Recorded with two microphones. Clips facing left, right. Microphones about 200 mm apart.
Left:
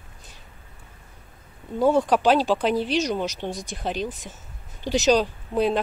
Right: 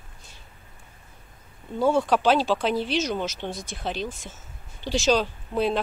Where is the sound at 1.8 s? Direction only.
15° left (ahead or behind).